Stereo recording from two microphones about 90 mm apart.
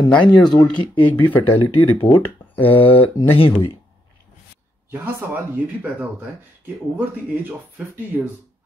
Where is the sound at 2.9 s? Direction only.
90° left.